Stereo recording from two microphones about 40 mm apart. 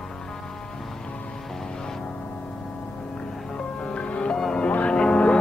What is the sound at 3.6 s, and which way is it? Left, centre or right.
Music, left.